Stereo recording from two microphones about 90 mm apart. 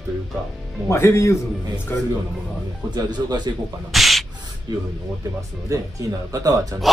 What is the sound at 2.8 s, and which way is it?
Speech, 50° right (ahead or behind).